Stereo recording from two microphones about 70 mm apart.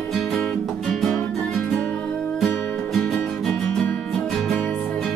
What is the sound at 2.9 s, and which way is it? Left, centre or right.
Music, centre.